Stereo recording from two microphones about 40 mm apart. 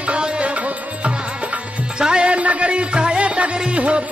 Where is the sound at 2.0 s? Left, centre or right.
Right.